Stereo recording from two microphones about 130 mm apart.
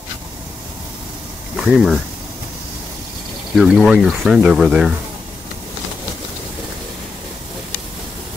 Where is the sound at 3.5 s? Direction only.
5° right (ahead or behind).